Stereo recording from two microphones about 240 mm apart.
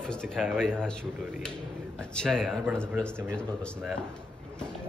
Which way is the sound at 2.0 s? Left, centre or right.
Centre.